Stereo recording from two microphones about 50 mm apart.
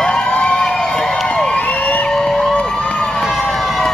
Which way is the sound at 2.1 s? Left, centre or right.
Centre.